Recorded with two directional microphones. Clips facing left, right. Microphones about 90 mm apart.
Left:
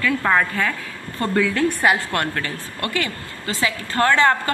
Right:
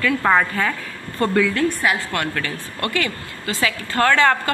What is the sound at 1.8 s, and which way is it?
Speech, 50° left (ahead or behind).